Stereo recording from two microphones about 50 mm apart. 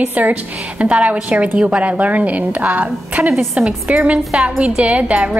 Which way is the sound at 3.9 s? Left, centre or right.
Right.